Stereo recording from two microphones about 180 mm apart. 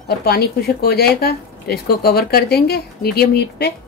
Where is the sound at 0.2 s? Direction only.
60° left (ahead or behind).